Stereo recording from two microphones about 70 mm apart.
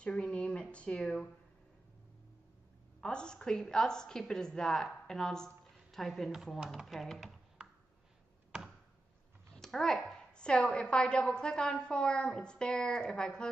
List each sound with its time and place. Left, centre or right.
0.0 s a sound: centre
3.0 s a woman's voice: centre
7.6 s ping: centre
9.5 s a woman's voice: centre